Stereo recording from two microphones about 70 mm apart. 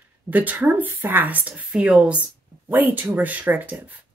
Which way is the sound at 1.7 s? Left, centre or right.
Centre.